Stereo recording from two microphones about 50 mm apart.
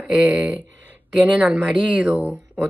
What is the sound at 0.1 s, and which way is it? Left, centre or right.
Speech, centre.